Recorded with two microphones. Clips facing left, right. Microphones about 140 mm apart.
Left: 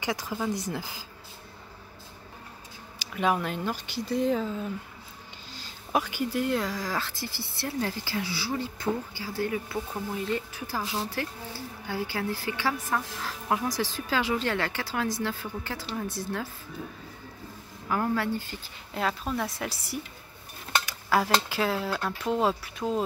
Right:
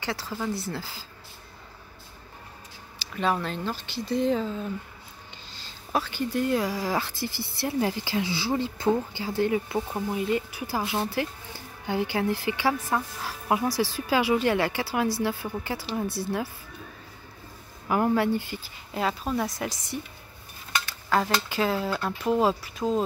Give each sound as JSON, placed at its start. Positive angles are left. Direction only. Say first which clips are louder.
{"t": 0.0, "sound": "speech", "louder": "left 1 dB", "side_deg": 15}
{"t": 3.0, "sound": "speech", "louder": "even", "side_deg": 10}
{"t": 10.1, "sound": "speech", "louder": "right 4 dB", "side_deg": -10}
{"t": 17.8, "sound": "speech", "louder": "right 4 dB", "side_deg": -20}
{"t": 18.9, "sound": "speech", "louder": "right 2 dB", "side_deg": -5}
{"t": 20.8, "sound": "stir", "louder": "right 1 dB", "side_deg": 10}
{"t": 21.5, "sound": "speech", "louder": "right 2 dB", "side_deg": 0}